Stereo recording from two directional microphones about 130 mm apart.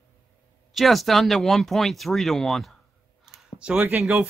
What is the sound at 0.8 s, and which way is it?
Speech, centre (ahead or behind).